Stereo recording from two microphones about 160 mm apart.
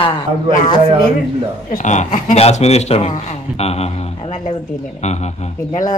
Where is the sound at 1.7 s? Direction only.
50° left (ahead or behind).